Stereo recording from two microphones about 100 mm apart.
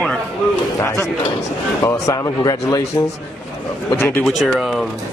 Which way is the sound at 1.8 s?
35° left (ahead or behind).